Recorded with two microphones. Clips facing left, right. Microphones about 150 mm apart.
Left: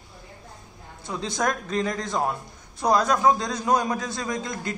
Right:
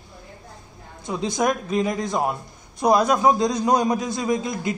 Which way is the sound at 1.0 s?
15° right (ahead or behind).